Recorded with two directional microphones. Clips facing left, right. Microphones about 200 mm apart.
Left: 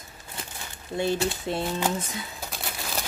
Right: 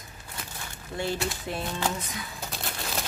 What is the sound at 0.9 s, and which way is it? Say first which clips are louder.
Speech: left 5 dB; 20° left (ahead or behind).